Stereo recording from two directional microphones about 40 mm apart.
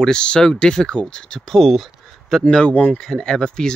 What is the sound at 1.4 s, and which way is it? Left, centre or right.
Speech, centre.